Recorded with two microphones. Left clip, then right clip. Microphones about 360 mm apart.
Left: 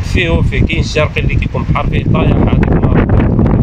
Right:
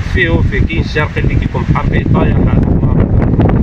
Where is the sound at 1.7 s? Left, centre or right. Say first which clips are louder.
Even; centre.